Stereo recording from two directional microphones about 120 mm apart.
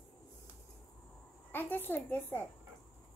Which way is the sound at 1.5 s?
15° left (ahead or behind).